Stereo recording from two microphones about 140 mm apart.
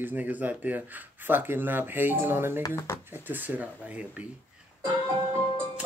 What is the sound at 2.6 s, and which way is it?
Speech, 20° left (ahead or behind).